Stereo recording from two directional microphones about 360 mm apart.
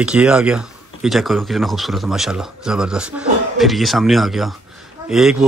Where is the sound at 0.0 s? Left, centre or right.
Centre.